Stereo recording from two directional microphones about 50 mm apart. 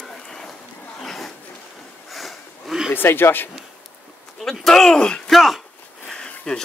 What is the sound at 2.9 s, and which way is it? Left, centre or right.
Speech, left.